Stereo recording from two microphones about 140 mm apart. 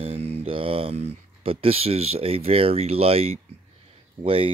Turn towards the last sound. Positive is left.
turn(degrees=-40)  # may be behind; listen again after turning